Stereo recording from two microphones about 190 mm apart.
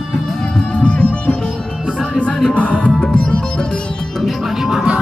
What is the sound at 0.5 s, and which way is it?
Music, 5° left (ahead or behind).